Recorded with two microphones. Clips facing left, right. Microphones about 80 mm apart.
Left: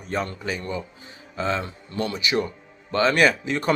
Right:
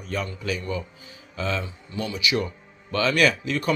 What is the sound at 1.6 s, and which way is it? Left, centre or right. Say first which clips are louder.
Speech: left 3 dB; left.